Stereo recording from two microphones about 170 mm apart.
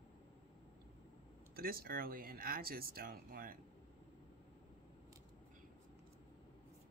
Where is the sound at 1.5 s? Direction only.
60° right (ahead or behind).